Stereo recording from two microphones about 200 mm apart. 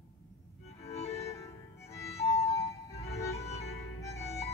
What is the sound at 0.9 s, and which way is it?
Music, 30° left (ahead or behind).